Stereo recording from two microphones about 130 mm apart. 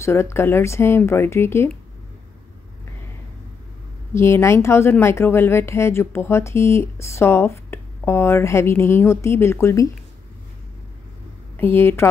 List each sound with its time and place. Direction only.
0.0 s speech: 20° left (ahead or behind)
4.1 s speech: 20° left (ahead or behind)
11.5 s a woman's voice: 20° left (ahead or behind)